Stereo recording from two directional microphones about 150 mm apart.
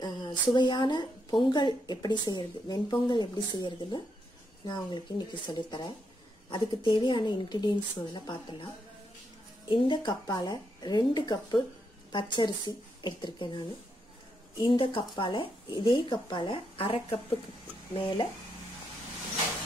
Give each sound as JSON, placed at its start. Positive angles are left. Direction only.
{"t": 0.0, "sound": "speech", "side_deg": 30}
{"t": 9.7, "sound": "speech", "side_deg": 30}